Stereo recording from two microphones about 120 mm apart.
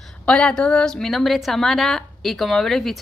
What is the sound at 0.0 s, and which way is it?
A woman's voice, 10° left (ahead or behind).